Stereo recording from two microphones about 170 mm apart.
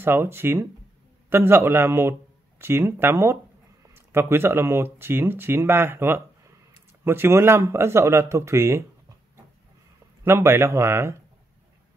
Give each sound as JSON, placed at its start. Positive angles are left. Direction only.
{"t": 0.0, "sound": "speech", "side_deg": -15}
{"t": 10.2, "sound": "speech", "side_deg": -15}